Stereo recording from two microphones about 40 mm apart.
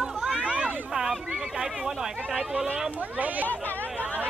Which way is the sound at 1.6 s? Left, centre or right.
Centre.